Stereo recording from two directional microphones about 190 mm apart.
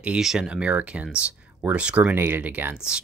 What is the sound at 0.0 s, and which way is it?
Speech, 5° right (ahead or behind).